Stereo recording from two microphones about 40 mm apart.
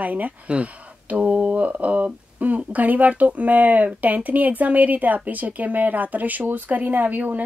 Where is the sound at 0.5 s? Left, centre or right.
Right.